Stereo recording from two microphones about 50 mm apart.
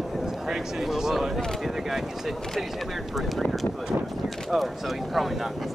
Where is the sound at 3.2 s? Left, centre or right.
Centre.